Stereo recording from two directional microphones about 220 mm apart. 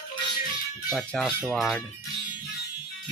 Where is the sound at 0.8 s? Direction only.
Centre (ahead or behind).